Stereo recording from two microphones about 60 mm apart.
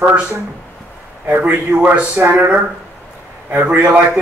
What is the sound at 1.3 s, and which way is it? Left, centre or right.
Speech, right.